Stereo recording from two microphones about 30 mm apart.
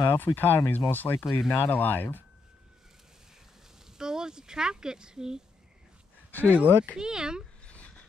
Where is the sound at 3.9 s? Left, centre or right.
Right.